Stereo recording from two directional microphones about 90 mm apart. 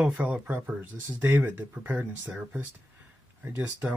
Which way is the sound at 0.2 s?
20° right (ahead or behind).